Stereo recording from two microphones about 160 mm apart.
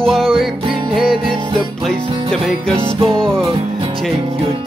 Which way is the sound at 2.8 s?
35° right (ahead or behind).